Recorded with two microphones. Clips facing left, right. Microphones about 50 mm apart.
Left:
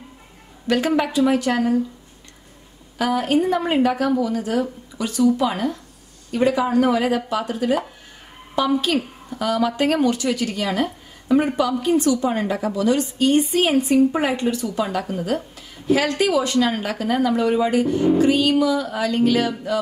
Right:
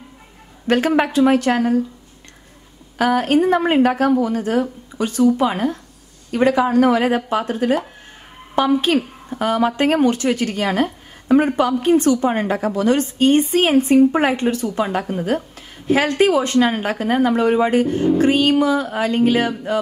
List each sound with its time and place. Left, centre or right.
0.7 s a woman's voice: right
3.0 s a woman's voice: right
6.3 s a woman's voice: right